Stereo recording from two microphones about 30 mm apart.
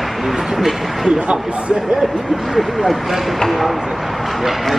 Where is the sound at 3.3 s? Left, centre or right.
Centre.